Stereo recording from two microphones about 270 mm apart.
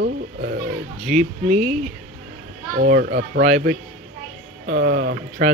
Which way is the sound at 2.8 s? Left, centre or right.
Right.